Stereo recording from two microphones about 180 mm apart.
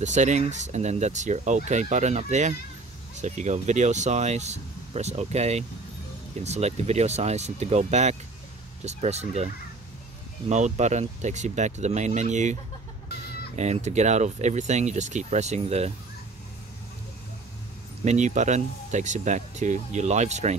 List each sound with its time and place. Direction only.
0.0 s speech: 40° right (ahead or behind)
10.5 s speech: 40° right (ahead or behind)
13.6 s speech: 40° right (ahead or behind)
18.0 s speech: 40° right (ahead or behind)